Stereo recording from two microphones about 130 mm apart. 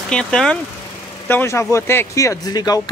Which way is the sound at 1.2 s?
20° left (ahead or behind).